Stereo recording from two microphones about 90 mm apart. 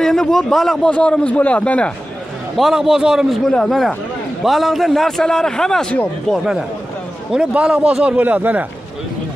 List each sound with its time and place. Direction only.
0.0 s a man's voice: 5° left (ahead or behind)
2.5 s a man's voice: 5° right (ahead or behind)
6.3 s a man's voice: 5° right (ahead or behind)